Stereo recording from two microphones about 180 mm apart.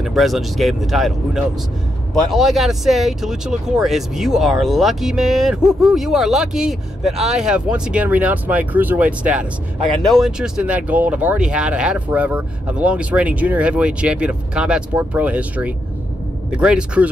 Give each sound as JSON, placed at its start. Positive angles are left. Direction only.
{"t": 0.0, "sound": "speech", "side_deg": 0}